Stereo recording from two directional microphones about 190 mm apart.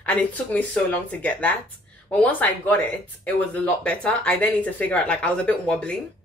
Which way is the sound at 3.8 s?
5° left (ahead or behind).